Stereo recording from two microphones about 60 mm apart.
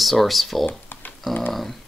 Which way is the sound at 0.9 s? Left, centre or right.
Left.